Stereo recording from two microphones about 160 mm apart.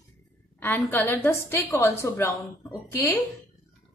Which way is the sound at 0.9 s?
10° left (ahead or behind).